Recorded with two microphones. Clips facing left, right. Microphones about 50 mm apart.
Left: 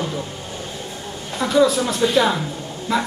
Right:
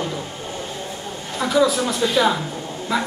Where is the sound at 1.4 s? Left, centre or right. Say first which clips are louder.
Left 1 dB; centre.